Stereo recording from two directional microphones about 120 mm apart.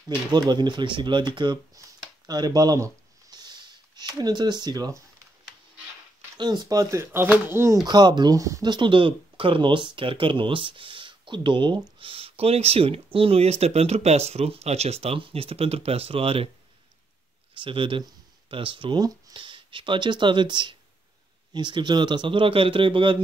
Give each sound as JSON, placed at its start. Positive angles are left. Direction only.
{"t": 0.3, "sound": "speech", "side_deg": -35}
{"t": 6.3, "sound": "speech", "side_deg": -35}
{"t": 7.8, "sound": "speech", "side_deg": -40}
{"t": 8.6, "sound": "speech", "side_deg": -40}
{"t": 17.6, "sound": "speech", "side_deg": -45}